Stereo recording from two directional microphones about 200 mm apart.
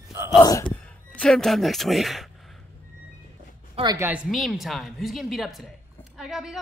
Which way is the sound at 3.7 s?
20° right (ahead or behind).